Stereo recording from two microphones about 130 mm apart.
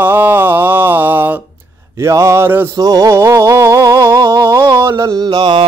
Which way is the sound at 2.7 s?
30° right (ahead or behind).